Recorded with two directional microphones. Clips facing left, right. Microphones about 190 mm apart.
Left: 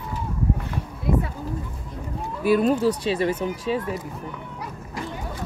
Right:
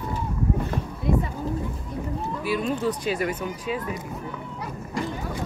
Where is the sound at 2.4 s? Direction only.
40° left (ahead or behind).